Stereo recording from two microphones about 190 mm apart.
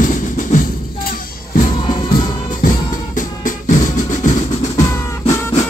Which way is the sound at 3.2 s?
45° left (ahead or behind).